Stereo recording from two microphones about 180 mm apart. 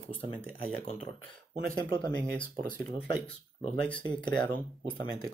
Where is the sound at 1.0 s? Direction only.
50° right (ahead or behind).